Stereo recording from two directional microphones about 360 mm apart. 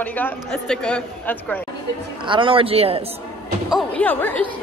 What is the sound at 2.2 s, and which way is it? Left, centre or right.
Speech, centre.